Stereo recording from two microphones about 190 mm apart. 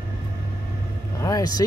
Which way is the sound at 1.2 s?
20° left (ahead or behind).